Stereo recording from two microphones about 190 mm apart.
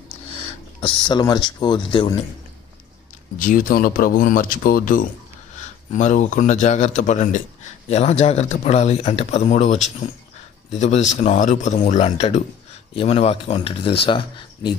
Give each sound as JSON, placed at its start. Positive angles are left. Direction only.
{"t": 0.1, "sound": "speech", "side_deg": 30}
{"t": 3.3, "sound": "speech", "side_deg": 45}